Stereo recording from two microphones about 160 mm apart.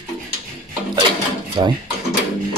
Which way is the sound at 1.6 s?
30° right (ahead or behind).